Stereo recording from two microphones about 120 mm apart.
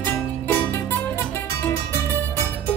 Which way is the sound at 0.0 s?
15° left (ahead or behind).